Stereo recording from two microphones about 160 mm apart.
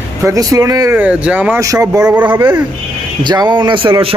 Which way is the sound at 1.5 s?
20° right (ahead or behind).